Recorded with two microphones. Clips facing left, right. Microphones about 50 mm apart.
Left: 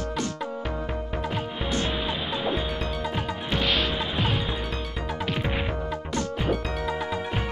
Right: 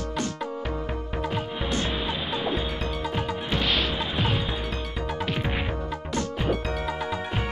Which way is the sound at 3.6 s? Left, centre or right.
Left.